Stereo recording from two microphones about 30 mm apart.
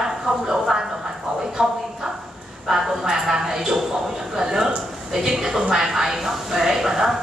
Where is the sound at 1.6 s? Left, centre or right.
Right.